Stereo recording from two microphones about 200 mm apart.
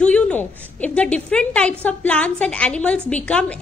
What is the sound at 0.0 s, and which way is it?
A woman's voice, 5° left (ahead or behind).